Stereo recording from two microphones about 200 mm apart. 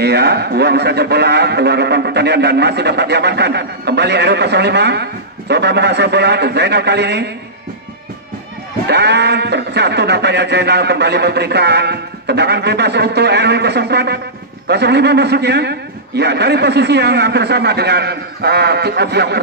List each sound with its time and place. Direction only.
0.0 s speech: 55° right (ahead or behind)
8.8 s speech: 55° right (ahead or behind)